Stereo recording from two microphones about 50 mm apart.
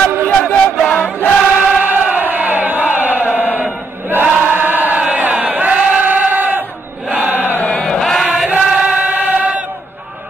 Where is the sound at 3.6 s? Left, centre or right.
Right.